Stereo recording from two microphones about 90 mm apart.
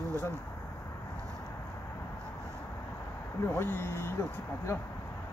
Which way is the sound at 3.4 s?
25° left (ahead or behind).